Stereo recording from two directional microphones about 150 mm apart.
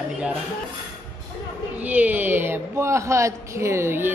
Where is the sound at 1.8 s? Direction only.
10° right (ahead or behind).